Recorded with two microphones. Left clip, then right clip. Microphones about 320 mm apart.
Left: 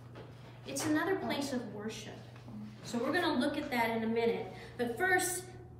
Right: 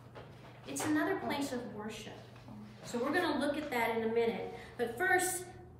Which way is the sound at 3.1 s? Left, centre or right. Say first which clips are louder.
Left 1 dB; centre.